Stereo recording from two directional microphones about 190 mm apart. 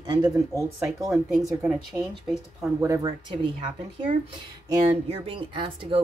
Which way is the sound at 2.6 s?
15° right (ahead or behind).